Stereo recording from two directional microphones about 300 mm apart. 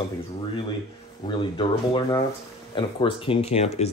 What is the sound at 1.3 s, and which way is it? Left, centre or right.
Speech, centre.